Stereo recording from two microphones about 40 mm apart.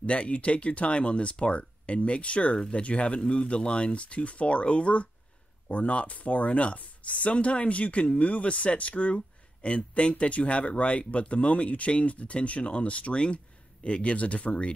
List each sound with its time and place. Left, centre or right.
0.0 s speech: left